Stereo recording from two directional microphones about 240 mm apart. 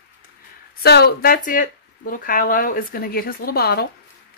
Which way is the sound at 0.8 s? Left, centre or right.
Left.